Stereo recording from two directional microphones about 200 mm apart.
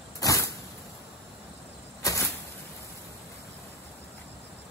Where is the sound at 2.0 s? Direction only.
15° left (ahead or behind).